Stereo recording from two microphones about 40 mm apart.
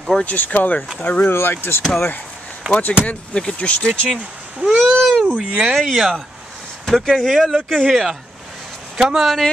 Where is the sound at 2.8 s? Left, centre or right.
Left.